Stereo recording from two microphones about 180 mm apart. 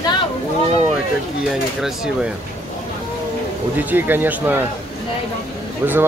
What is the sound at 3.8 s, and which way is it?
Speech, 10° right (ahead or behind).